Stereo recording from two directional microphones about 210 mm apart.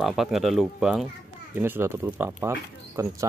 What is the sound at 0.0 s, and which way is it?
Speech, centre (ahead or behind).